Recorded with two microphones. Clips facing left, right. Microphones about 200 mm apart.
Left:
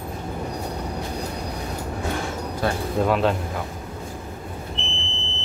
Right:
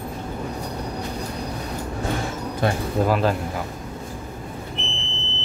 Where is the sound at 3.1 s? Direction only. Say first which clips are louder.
Left 1 dB; centre (ahead or behind).